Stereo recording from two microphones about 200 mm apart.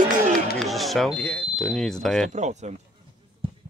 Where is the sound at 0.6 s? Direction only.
Centre (ahead or behind).